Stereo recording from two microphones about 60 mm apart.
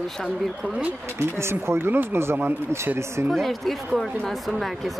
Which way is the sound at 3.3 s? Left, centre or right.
Centre.